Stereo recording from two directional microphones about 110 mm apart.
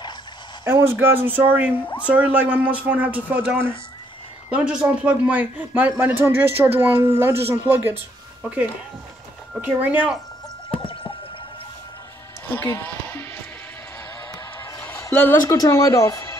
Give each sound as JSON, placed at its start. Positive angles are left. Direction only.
{"t": 0.7, "sound": "speech", "side_deg": -20}
{"t": 10.8, "sound": "drip", "side_deg": 55}
{"t": 12.4, "sound": "speech", "side_deg": 20}
{"t": 14.3, "sound": "music", "side_deg": 25}
{"t": 15.4, "sound": "speech", "side_deg": 35}